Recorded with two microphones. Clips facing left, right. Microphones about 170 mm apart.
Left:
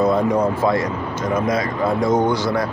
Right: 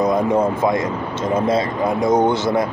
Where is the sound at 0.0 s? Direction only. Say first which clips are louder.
Even; 20° right (ahead or behind).